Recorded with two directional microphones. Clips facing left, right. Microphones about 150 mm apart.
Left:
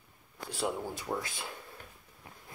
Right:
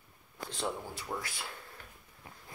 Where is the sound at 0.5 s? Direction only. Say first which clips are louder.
Left 3 dB; 10° left (ahead or behind).